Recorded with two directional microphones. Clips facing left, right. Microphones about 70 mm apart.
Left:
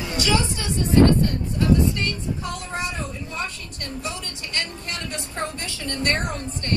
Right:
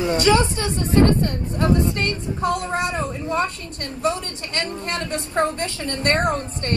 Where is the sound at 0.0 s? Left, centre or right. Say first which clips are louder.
Right 6 dB; right.